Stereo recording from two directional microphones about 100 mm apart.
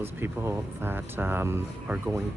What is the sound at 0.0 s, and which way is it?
Speech, 20° right (ahead or behind).